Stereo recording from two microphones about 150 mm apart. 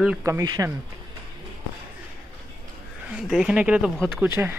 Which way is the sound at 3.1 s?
5° right (ahead or behind).